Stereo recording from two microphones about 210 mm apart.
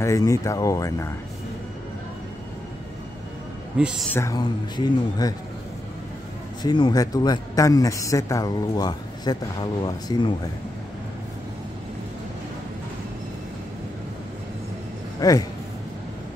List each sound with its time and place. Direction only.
0.0 s speech: 15° left (ahead or behind)
3.7 s speech: 5° right (ahead or behind)
4.1 s speech: 15° left (ahead or behind)
6.6 s speech: 20° left (ahead or behind)
15.1 s speech: 15° left (ahead or behind)